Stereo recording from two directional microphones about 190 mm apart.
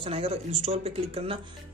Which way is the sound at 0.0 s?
30° right (ahead or behind).